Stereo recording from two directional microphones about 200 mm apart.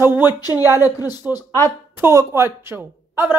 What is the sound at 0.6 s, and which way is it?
Speech, 10° right (ahead or behind).